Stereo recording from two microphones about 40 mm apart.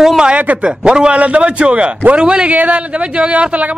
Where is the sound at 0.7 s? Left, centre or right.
Right.